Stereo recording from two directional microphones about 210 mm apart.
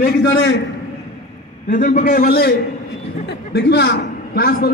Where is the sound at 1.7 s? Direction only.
40° left (ahead or behind).